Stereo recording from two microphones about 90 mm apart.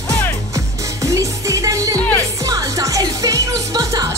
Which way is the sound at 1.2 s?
40° right (ahead or behind).